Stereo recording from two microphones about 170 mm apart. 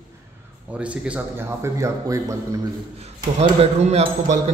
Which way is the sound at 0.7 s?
5° right (ahead or behind).